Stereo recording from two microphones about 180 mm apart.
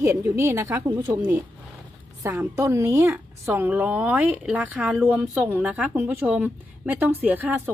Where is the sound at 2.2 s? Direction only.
15° right (ahead or behind).